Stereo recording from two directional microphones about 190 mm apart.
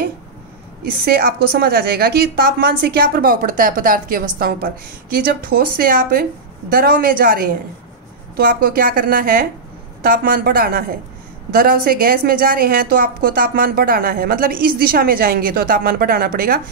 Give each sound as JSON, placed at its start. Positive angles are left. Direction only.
{"t": 1.0, "sound": "a woman's voice", "side_deg": -50}